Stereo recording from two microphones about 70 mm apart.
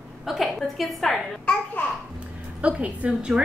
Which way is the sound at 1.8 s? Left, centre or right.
Left.